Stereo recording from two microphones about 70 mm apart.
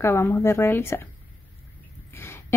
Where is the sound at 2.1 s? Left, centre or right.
Left.